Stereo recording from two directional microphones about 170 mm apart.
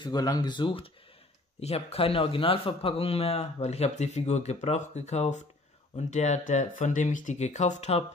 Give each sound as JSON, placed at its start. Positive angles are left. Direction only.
{"t": 0.0, "sound": "speech", "side_deg": 25}